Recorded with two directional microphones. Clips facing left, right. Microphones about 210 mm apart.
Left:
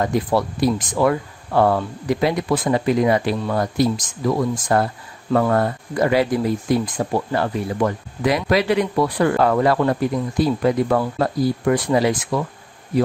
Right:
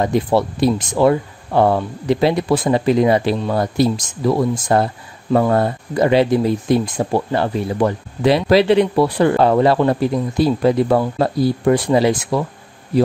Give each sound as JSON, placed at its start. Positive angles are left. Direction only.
{"t": 0.0, "sound": "speech", "side_deg": -25}